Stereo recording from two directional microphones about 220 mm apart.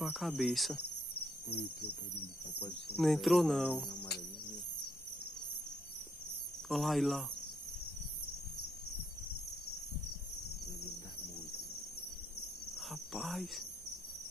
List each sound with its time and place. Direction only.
0.0 s cricket: centre (ahead or behind)
1.5 s speech: 45° left (ahead or behind)
3.0 s music: centre (ahead or behind)
6.7 s music: centre (ahead or behind)
12.7 s speech: centre (ahead or behind)